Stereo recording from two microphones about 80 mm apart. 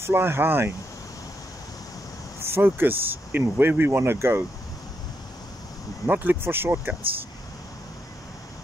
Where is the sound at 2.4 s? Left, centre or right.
Right.